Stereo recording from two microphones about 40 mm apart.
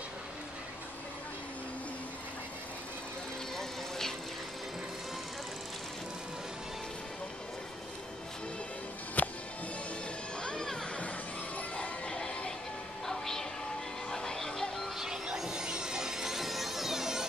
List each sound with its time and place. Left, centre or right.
9.2 s music: left
10.4 s music: centre
11.5 s music: left
12.1 s music: left
13.0 s a sound: centre
14.1 s music: centre
15.0 s music: centre